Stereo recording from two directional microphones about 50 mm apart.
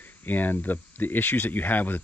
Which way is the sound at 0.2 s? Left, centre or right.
Left.